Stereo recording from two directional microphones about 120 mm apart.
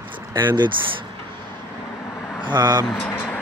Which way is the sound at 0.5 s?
40° right (ahead or behind).